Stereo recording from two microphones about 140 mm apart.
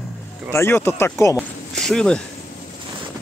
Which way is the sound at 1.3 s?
5° left (ahead or behind).